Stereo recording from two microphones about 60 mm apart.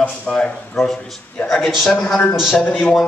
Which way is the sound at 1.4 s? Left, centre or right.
Left.